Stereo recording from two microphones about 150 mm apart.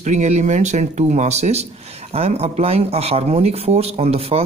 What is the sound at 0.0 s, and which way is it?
Speech, 50° right (ahead or behind).